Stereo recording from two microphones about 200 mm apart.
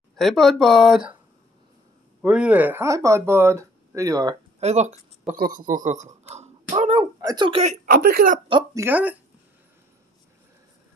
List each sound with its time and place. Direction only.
0.1 s speech: centre (ahead or behind)
2.2 s speech: 5° right (ahead or behind)
4.6 s speech: 35° right (ahead or behind)
7.2 s speech: 20° right (ahead or behind)
7.8 s speech: 50° right (ahead or behind)
8.5 s speech: 25° right (ahead or behind)
8.8 s speech: 10° right (ahead or behind)